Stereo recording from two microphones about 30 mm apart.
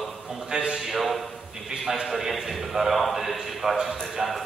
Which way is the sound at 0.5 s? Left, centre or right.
Right.